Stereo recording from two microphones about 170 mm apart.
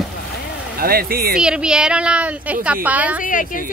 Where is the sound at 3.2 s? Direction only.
50° left (ahead or behind).